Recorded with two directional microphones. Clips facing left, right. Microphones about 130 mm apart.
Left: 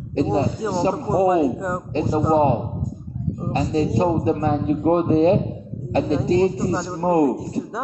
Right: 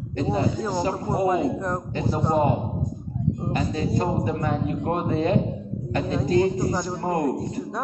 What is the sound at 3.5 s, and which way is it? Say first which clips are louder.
A man's voice: left 7 dB; 35° left (ahead or behind).